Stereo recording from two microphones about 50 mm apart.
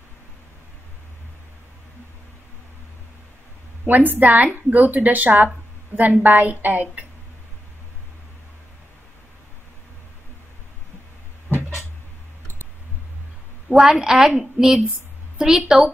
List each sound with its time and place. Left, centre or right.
3.8 s a woman's voice: right
13.7 s a woman's voice: centre